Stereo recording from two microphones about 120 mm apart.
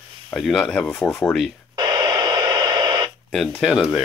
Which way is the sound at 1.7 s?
35° right (ahead or behind).